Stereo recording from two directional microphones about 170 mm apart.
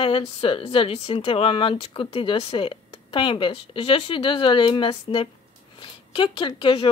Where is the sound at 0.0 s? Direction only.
35° left (ahead or behind).